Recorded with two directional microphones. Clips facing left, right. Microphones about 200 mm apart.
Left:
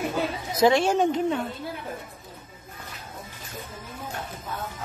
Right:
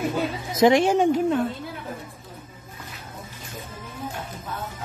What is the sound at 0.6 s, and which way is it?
Speech, 15° right (ahead or behind).